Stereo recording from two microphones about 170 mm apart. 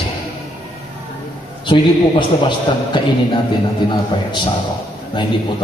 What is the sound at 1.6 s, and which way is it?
A man's voice, 25° left (ahead or behind).